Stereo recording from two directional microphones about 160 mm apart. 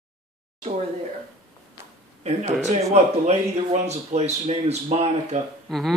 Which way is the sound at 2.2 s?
40° right (ahead or behind).